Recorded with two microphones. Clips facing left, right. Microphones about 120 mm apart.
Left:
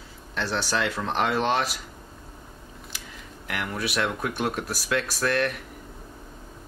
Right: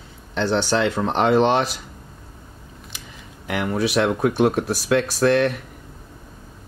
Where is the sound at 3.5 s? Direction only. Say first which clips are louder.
Right 8 dB; 25° right (ahead or behind).